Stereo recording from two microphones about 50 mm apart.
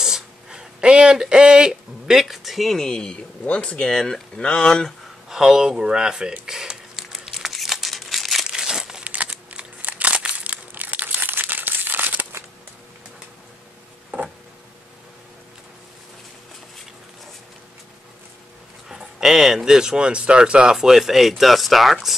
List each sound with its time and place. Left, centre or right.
0.0 s speech: centre
5.3 s speech: centre
6.4 s crumpling: centre
8.5 s crumpling: centre
9.0 s crumpling: right
18.9 s speech: centre